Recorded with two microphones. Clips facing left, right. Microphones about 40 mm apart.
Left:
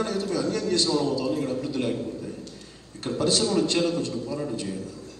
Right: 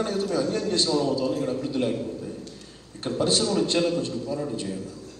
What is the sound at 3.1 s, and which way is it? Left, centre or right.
Speech, centre.